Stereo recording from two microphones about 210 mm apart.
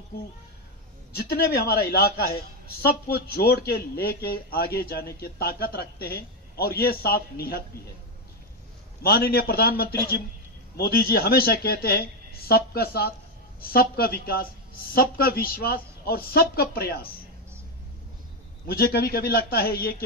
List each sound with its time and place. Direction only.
1.1 s speech: 50° left (ahead or behind)
9.0 s speech: 45° left (ahead or behind)
18.7 s speech: 45° left (ahead or behind)